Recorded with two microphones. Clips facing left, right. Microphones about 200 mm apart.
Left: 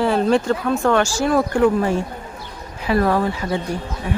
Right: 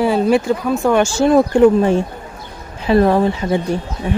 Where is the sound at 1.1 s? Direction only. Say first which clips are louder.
Right 6 dB; 25° right (ahead or behind).